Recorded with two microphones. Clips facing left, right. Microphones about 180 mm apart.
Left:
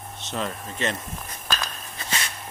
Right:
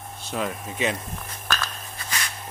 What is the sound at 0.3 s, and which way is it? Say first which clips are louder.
Speech: right 2 dB; 10° right (ahead or behind).